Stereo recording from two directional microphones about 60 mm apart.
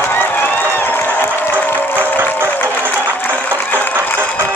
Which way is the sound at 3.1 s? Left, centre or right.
Left.